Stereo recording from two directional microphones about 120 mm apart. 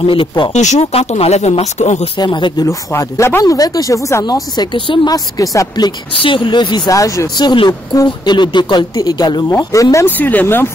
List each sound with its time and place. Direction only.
0.0 s speech: 45° left (ahead or behind)
0.5 s speech: 80° left
2.1 s speech: 35° left (ahead or behind)
2.6 s speech: 25° left (ahead or behind); by 5.1 s 45° left (ahead or behind)
5.1 s speech: 30° left (ahead or behind)
6.9 s speech: 25° left (ahead or behind)
9.5 s speech: 25° left (ahead or behind)
10.1 s speech: 15° left (ahead or behind)